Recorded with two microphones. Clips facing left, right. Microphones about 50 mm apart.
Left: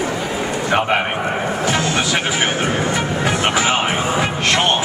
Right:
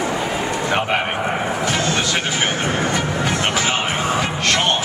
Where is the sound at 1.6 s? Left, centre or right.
Centre.